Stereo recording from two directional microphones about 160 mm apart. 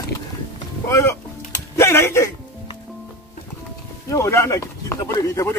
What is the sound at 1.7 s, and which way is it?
Typing, 15° left (ahead or behind).